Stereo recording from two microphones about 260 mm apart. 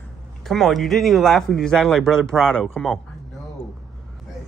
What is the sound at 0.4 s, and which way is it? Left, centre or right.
Speech, centre.